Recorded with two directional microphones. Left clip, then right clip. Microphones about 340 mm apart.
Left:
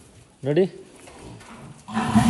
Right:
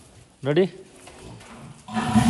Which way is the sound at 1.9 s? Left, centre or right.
Centre.